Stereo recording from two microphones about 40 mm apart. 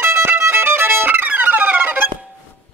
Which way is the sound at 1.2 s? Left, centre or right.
Right.